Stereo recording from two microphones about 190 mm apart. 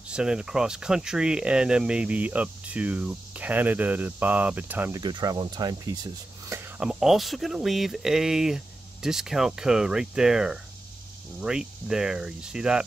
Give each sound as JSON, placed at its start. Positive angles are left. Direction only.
{"t": 0.1, "sound": "speech", "side_deg": -5}
{"t": 5.0, "sound": "speech", "side_deg": -20}
{"t": 6.4, "sound": "a sound", "side_deg": -15}
{"t": 6.8, "sound": "speech", "side_deg": 0}